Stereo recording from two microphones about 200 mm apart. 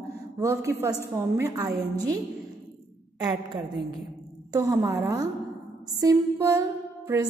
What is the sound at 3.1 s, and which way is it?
A woman's voice, 20° right (ahead or behind).